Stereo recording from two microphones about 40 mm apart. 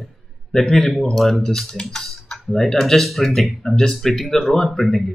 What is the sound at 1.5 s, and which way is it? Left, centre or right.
Speech, centre.